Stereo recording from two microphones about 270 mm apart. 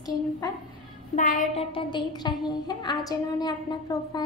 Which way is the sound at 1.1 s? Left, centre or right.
Left.